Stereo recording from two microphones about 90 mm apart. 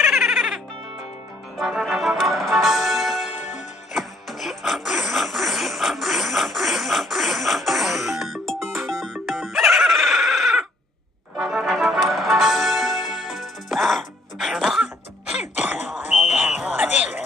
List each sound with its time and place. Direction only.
0.0 s music: centre (ahead or behind)
1.6 s music: centre (ahead or behind)
15.3 s a sound: 15° right (ahead or behind)
16.7 s music: 15° right (ahead or behind)